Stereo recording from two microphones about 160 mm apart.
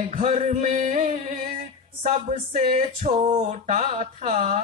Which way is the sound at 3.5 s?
45° right (ahead or behind).